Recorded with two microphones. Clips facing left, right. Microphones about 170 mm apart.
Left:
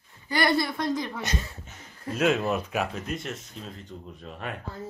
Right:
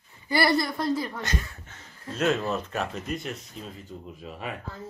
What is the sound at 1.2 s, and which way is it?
Speech, 20° left (ahead or behind).